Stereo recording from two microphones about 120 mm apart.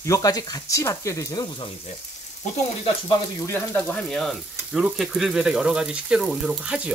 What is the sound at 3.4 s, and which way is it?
Speech, 15° left (ahead or behind).